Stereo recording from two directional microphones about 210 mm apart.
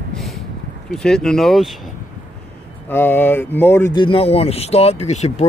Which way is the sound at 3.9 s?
25° left (ahead or behind).